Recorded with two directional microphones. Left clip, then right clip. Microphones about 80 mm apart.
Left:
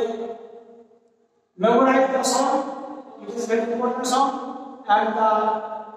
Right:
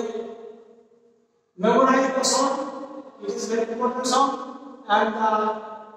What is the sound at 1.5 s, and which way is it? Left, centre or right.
A man's voice, right.